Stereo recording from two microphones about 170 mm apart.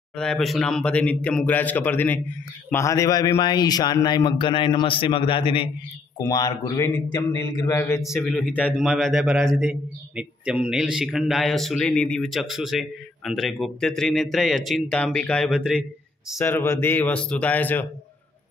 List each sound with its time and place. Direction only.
0.1 s speech: 5° left (ahead or behind); by 5.7 s 30° left (ahead or behind)
6.1 s speech: 20° left (ahead or behind)
8.1 s a man's voice: 5° left (ahead or behind)
16.3 s speech: 15° left (ahead or behind)